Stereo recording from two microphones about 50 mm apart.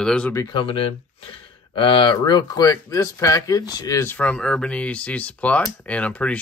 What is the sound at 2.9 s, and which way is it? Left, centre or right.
Speech, left.